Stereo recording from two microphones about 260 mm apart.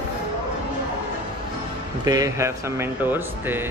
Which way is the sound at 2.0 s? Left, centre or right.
Centre.